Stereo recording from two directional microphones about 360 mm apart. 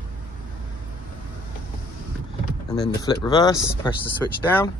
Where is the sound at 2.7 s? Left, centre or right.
Centre.